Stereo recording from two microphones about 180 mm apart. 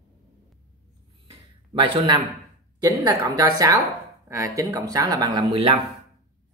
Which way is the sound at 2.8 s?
20° right (ahead or behind).